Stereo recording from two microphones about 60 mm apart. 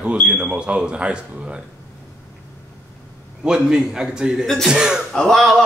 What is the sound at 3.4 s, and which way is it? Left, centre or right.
A man's voice, centre.